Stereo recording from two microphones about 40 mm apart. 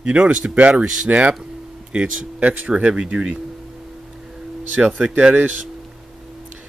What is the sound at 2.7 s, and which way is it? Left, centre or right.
Speech, right.